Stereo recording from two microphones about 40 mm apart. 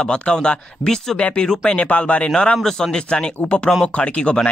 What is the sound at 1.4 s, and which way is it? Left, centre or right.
Speech, centre.